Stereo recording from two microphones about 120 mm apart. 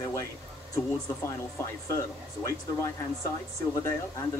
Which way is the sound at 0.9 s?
25° left (ahead or behind).